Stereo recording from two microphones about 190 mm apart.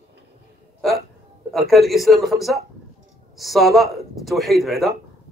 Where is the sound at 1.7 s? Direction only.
Centre (ahead or behind).